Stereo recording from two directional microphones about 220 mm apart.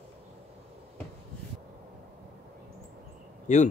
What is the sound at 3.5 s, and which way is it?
Speech, 35° left (ahead or behind).